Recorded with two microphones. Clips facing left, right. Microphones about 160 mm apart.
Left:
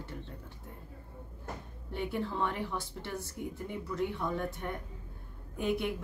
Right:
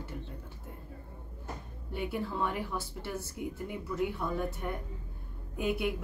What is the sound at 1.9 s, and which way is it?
A woman's voice, 5° right (ahead or behind).